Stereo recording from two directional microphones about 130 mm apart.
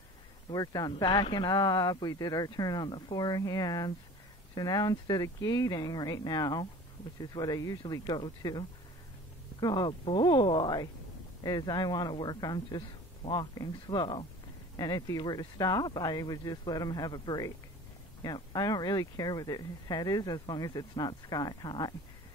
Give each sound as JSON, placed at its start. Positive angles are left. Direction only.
{"t": 0.5, "sound": "speech", "side_deg": 30}